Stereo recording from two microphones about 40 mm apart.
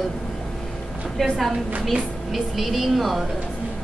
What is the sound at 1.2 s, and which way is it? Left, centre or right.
A woman's voice, centre.